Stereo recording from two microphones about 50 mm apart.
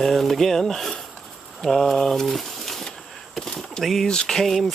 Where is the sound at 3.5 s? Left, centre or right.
Centre.